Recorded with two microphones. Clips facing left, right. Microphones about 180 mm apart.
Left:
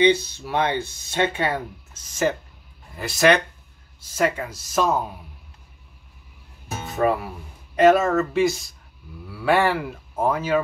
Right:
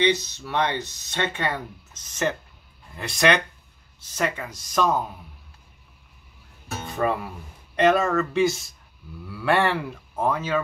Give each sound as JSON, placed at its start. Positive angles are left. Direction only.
{"t": 0.0, "sound": "speech", "side_deg": 10}
{"t": 3.0, "sound": "speech", "side_deg": 5}
{"t": 6.9, "sound": "music", "side_deg": 5}
{"t": 7.7, "sound": "speech", "side_deg": 5}